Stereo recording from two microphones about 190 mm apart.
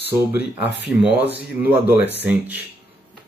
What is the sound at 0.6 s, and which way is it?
Speech, 65° left (ahead or behind).